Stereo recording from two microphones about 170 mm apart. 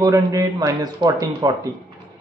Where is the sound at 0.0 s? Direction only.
20° right (ahead or behind).